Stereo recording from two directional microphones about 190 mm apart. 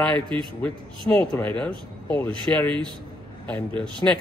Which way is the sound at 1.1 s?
5° left (ahead or behind).